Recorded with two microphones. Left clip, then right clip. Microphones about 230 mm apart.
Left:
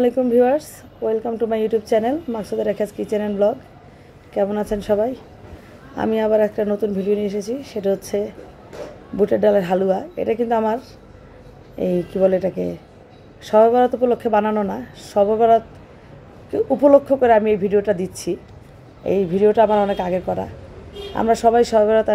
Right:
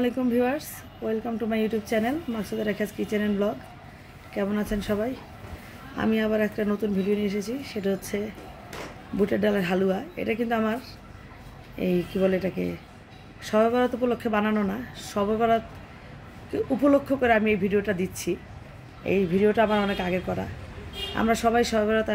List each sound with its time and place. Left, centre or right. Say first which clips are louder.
0.0 s a woman's voice: left 9 dB; centre
7.2 s speech: left 6 dB; centre
7.7 s a woman's voice: left 8 dB; centre
11.8 s a woman's voice: left 7 dB; centre